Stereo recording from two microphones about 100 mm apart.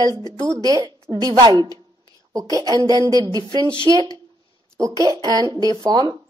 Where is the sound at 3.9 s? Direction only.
40° right (ahead or behind).